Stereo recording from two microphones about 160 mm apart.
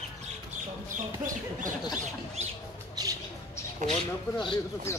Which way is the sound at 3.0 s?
25° right (ahead or behind).